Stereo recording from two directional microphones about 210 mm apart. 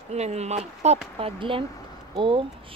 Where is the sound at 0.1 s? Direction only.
30° right (ahead or behind).